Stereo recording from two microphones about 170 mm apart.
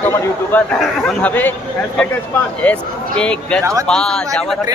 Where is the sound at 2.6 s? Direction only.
5° left (ahead or behind).